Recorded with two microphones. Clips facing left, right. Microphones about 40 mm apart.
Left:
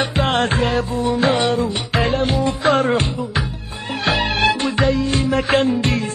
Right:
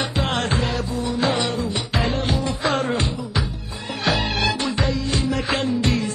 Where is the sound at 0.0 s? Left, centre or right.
Left.